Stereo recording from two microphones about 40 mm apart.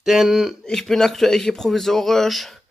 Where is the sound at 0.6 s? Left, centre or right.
Centre.